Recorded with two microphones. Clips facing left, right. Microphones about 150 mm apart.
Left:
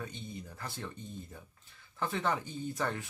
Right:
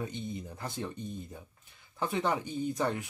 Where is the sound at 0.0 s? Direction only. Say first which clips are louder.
Right 5 dB; 20° right (ahead or behind).